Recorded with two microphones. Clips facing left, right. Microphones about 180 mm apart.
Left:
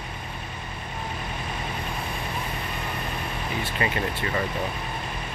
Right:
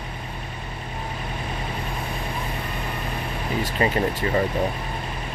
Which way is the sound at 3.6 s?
35° right (ahead or behind).